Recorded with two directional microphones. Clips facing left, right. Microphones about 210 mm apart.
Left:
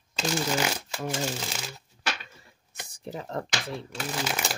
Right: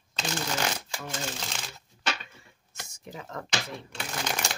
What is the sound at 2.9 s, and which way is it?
Speech, 35° left (ahead or behind).